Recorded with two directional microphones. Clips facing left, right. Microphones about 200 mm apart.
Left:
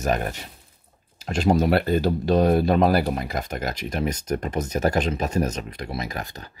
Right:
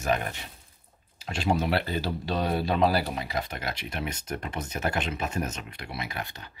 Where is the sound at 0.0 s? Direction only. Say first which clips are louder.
Left 4 dB; 40° left (ahead or behind).